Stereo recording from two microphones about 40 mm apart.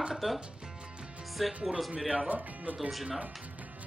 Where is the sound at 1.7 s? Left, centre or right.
Centre.